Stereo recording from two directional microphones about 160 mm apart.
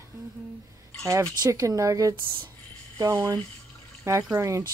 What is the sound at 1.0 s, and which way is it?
Speech, 20° right (ahead or behind).